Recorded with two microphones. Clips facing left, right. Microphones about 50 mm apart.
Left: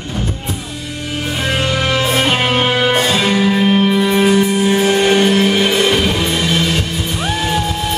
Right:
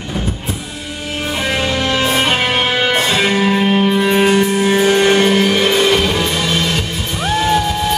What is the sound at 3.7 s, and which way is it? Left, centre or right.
Music, centre.